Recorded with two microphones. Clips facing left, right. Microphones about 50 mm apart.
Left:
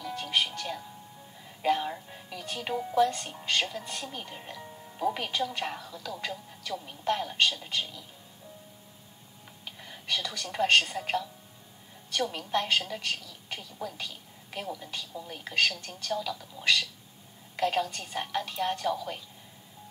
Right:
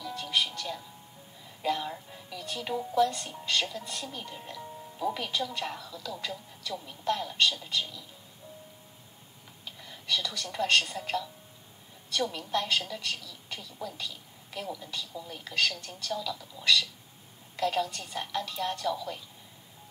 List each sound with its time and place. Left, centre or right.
0.0 s music: left
1.6 s a woman's voice: left
9.7 s a woman's voice: left